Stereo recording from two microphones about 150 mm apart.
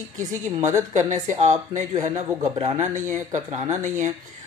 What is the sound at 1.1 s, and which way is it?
A woman's voice, 55° right (ahead or behind).